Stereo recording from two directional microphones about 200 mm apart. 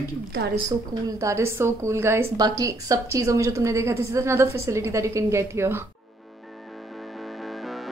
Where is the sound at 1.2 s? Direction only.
15° right (ahead or behind).